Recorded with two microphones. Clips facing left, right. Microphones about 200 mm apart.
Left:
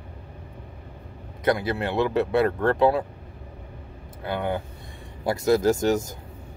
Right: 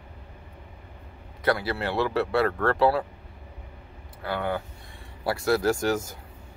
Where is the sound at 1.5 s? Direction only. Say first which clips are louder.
Left 2 dB; 20° left (ahead or behind).